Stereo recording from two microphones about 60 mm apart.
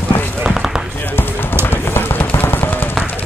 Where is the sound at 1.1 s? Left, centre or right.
Left.